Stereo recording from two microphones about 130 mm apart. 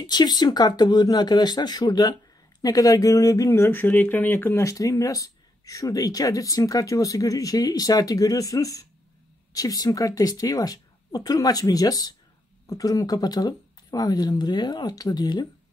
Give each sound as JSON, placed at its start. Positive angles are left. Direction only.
{"t": 0.0, "sound": "speech", "side_deg": 30}